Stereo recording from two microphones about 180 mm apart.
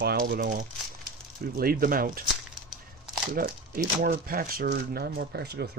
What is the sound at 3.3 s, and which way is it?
Speech, 50° right (ahead or behind).